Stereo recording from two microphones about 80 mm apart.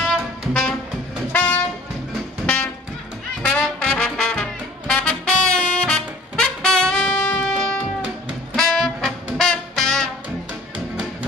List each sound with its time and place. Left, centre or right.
0.5 s music: centre
1.3 s train: left
2.4 s music: centre
3.4 s brass instrument: centre
8.5 s music: centre